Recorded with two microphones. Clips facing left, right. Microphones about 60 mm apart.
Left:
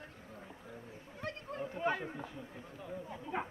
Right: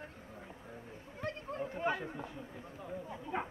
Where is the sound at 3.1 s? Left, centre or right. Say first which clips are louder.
Even; centre.